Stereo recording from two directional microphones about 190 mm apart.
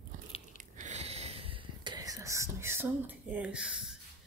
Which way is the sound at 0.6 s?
40° right (ahead or behind).